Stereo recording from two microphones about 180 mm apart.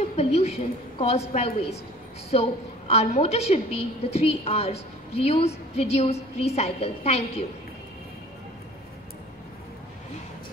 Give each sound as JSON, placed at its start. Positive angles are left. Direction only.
{"t": 0.0, "sound": "a woman's voice", "side_deg": 35}